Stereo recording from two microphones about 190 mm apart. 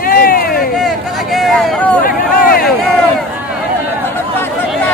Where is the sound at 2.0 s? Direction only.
50° left (ahead or behind).